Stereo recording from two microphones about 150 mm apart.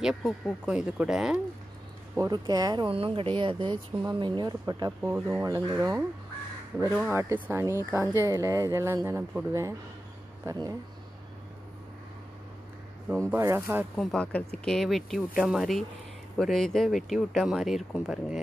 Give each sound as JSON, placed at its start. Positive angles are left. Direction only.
{"t": 0.0, "sound": "speech", "side_deg": -5}
{"t": 2.1, "sound": "speech", "side_deg": -25}
{"t": 7.1, "sound": "speech", "side_deg": -15}
{"t": 13.2, "sound": "speech", "side_deg": -20}
{"t": 13.9, "sound": "speech", "side_deg": 5}